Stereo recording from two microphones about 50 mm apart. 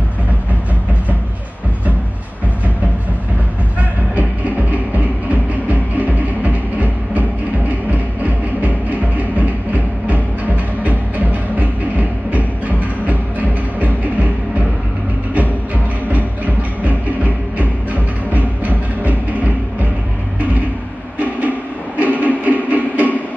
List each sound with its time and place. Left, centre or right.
4.1 s music: right
10.0 s music: right
16.1 s music: right
21.4 s a sound: right